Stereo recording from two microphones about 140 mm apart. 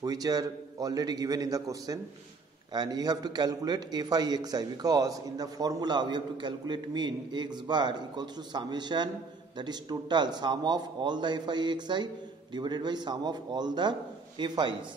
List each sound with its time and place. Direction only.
0.0 s a man's voice: 25° right (ahead or behind)